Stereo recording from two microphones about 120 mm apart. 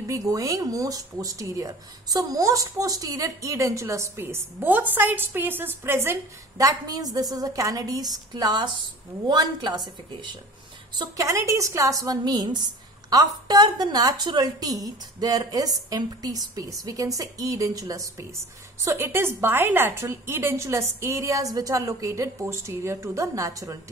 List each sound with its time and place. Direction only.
0.0 s speech: 25° right (ahead or behind)
6.6 s a woman's voice: 30° right (ahead or behind)
11.0 s a woman's voice: 25° right (ahead or behind)